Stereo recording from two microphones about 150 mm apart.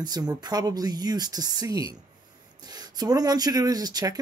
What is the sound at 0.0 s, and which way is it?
Speech, 25° right (ahead or behind).